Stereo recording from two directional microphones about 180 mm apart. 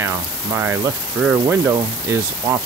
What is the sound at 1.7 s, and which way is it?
Speech, 20° right (ahead or behind).